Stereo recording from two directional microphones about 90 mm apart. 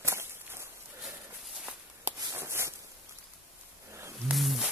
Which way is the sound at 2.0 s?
30° right (ahead or behind).